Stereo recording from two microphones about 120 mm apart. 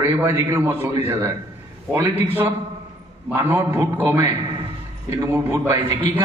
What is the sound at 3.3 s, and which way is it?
A man's voice, 20° right (ahead or behind).